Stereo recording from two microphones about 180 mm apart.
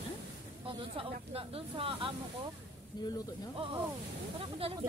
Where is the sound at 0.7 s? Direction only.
30° right (ahead or behind).